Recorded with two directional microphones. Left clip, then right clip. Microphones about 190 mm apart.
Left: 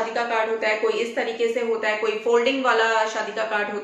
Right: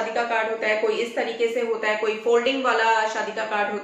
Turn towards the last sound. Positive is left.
turn(degrees=10)  # may be behind; listen again after turning